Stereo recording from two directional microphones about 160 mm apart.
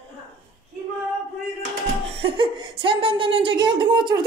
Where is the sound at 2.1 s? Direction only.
35° right (ahead or behind).